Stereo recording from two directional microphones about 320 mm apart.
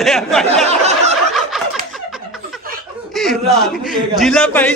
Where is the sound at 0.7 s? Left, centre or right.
Right.